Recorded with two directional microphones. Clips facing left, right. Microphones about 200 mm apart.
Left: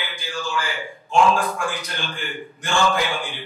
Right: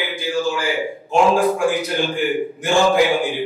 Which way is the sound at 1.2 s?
10° right (ahead or behind).